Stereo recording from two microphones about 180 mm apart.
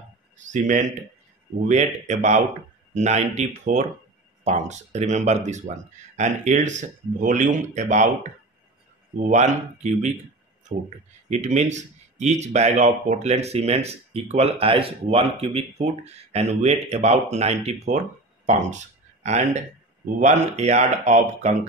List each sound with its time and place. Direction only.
0.5 s speech: 45° right (ahead or behind)
9.3 s speech: 40° right (ahead or behind)
11.2 s speech: 40° right (ahead or behind)